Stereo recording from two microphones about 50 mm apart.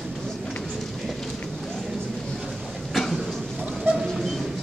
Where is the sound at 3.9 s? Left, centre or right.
Right.